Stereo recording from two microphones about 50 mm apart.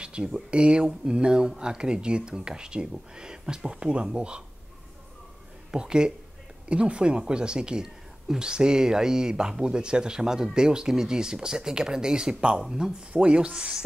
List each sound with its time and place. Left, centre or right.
0.0 s speech: centre
5.7 s speech: centre
13.1 s rub: right